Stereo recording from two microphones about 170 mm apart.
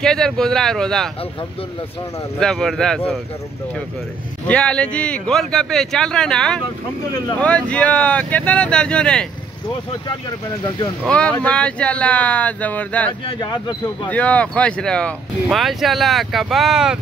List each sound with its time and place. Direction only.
0.0 s speech: 5° left (ahead or behind)
2.4 s speech: 5° left (ahead or behind)
4.5 s speech: 5° left (ahead or behind)
11.1 s speech: 5° left (ahead or behind)
13.4 s speech: 25° left (ahead or behind)
14.0 s speech: 10° left (ahead or behind)